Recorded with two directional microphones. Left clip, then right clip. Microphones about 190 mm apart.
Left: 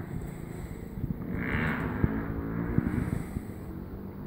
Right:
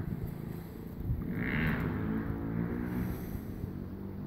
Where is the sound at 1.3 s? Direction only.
35° left (ahead or behind).